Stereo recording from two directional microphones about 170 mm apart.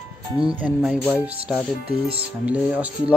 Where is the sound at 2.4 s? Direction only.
10° right (ahead or behind).